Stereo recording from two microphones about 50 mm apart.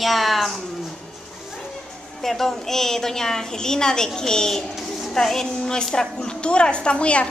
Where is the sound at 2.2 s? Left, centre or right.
Centre; by 7.3 s left.